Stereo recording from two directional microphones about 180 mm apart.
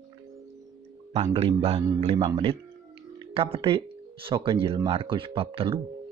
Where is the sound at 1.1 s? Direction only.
35° right (ahead or behind).